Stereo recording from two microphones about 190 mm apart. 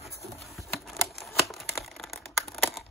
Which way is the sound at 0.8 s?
Centre (ahead or behind).